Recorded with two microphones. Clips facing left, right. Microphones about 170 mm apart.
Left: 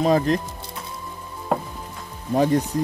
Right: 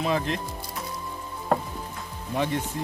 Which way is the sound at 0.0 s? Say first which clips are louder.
Left 7 dB; 40° left (ahead or behind).